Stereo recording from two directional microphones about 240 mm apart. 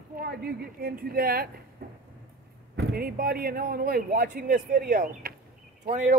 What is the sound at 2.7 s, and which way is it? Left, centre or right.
Speech, right.